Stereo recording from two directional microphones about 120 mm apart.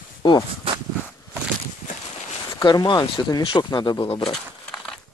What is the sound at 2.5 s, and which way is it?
Speech, 35° left (ahead or behind).